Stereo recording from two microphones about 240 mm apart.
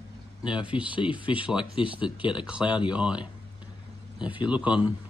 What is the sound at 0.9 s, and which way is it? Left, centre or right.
Speech, left.